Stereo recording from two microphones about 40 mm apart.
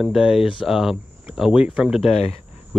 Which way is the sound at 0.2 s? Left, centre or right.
Centre.